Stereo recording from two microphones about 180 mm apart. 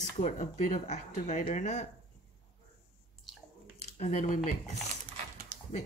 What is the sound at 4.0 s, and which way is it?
Speech, 45° left (ahead or behind).